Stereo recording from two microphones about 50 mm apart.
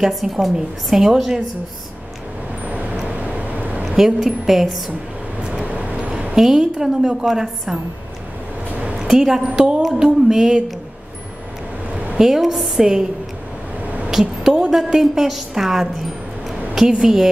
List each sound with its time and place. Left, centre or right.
0.0 s a woman's voice: centre
2.6 s vehicle: right
3.8 s a woman's voice: centre
5.7 s vehicle: right
6.3 s a woman's voice: centre
8.9 s a woman's voice: centre
9.8 s a woman's voice: centre
10.0 s a woman's voice: centre
12.2 s a woman's voice: centre
13.8 s a sound: right
14.2 s a sound: centre
14.8 s a woman's voice: centre
16.9 s a woman's voice: centre